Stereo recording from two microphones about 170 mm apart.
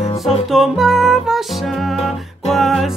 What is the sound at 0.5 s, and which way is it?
Music, centre (ahead or behind).